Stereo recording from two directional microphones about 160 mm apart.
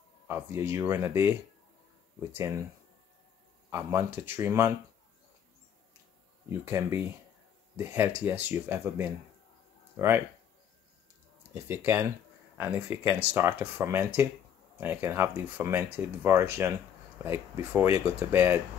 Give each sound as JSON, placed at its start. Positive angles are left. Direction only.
{"t": 0.3, "sound": "speech", "side_deg": -15}
{"t": 2.3, "sound": "speech", "side_deg": -20}
{"t": 3.7, "sound": "speech", "side_deg": -15}
{"t": 6.6, "sound": "speech", "side_deg": -15}
{"t": 11.5, "sound": "speech", "side_deg": -10}